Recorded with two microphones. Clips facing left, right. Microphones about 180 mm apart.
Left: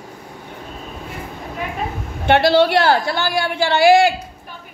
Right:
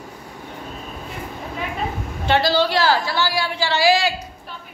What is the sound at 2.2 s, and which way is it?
A woman's voice, 60° left (ahead or behind).